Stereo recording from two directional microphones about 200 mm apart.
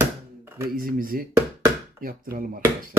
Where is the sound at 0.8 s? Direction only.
45° right (ahead or behind).